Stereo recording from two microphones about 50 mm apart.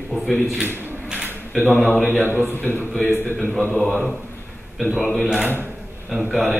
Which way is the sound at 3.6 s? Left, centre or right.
Centre.